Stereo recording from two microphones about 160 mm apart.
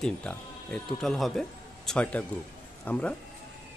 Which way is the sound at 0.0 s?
5° left (ahead or behind).